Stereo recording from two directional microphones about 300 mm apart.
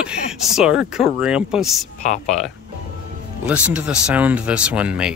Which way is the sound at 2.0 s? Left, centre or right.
Left.